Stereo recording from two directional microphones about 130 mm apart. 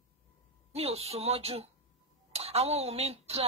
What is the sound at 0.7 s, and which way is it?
Speech, 50° right (ahead or behind).